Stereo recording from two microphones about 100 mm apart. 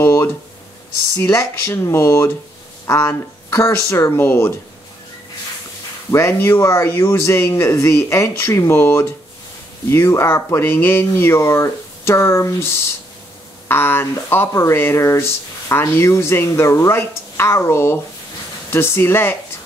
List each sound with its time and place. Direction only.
0.0 s a sound: 25° left (ahead or behind)
1.1 s speech: 30° left (ahead or behind)
6.1 s speech: 25° left (ahead or behind)